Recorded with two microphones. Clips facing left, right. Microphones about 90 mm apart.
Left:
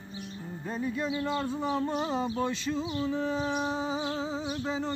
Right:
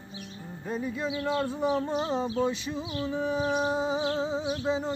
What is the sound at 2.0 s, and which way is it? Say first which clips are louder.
Speech: right 2 dB; centre (ahead or behind).